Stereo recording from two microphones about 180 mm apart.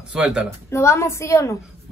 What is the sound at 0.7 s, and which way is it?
Speech, 15° left (ahead or behind).